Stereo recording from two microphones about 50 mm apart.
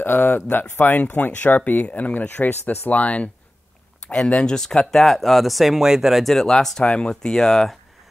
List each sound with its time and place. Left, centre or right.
0.0 s speech: left; by 6.3 s centre
6.3 s speech: centre
6.8 s speech: left